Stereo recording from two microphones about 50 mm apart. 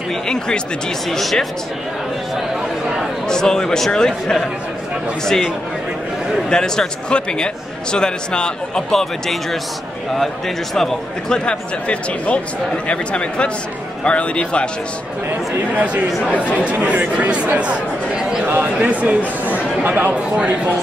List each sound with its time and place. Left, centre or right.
1.0 s speech: centre
3.3 s a man's voice: centre
6.5 s a man's voice: centre
8.9 s a man's voice: centre; by 14.7 s left
15.7 s speech: right
18.8 s speech: right